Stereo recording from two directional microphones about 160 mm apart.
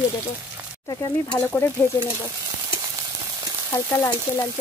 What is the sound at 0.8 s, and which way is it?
Speech, 25° left (ahead or behind).